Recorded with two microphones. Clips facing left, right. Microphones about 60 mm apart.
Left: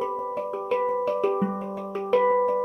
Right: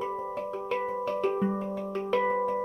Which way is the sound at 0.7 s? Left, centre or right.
Centre.